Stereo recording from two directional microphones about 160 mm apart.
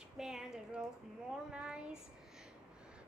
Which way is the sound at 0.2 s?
5° right (ahead or behind).